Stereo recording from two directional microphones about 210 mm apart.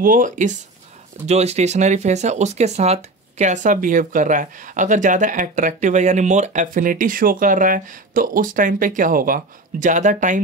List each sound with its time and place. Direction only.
0.0 s speech: 40° right (ahead or behind)